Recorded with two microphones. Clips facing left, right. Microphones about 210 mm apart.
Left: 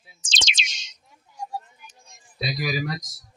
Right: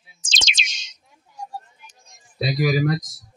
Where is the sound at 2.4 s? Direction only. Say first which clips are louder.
Right 7 dB; 50° right (ahead or behind).